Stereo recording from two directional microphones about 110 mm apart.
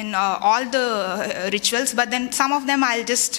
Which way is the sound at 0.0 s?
15° left (ahead or behind).